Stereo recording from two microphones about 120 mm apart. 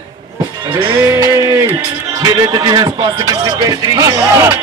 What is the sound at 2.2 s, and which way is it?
Speech, 40° right (ahead or behind).